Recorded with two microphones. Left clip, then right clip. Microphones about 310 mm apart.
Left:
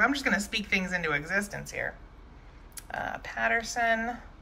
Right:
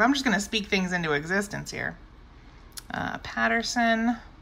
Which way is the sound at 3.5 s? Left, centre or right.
Centre.